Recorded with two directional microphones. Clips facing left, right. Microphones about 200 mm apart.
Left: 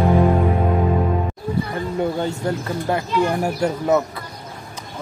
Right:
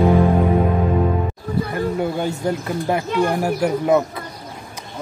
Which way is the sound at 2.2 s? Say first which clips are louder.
Right 1 dB; 15° right (ahead or behind).